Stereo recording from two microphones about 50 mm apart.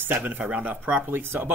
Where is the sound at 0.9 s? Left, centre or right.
Right.